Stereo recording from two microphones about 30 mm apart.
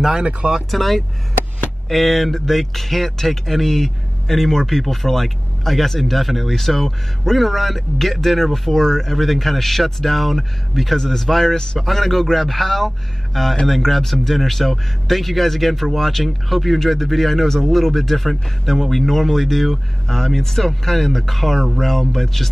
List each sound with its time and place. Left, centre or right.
0.2 s speech: right
0.7 s speech: centre